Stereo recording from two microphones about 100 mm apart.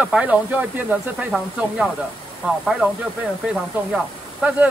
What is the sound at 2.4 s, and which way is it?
Speech, 5° right (ahead or behind).